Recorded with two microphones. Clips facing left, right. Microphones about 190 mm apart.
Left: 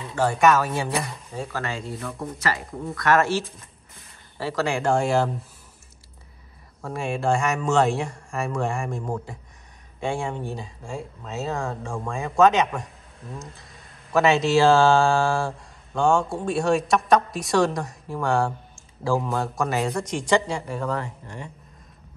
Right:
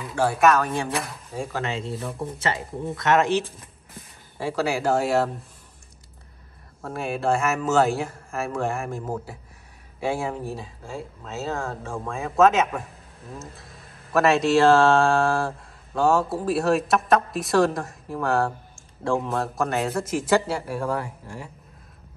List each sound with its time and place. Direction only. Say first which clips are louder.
0.1 s speech: even; 10° right (ahead or behind)
6.8 s speech: even; centre (ahead or behind)